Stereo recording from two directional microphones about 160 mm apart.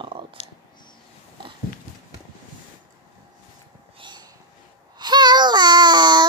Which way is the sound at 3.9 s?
30° right (ahead or behind).